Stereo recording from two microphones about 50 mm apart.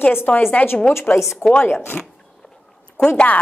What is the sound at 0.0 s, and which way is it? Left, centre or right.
A woman's voice, left.